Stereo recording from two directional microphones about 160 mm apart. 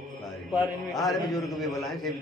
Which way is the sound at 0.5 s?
Centre (ahead or behind).